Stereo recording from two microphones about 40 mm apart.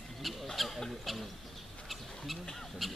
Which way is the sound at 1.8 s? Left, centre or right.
Centre.